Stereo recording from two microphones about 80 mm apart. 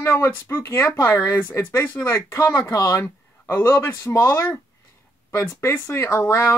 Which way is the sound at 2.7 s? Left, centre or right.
Left.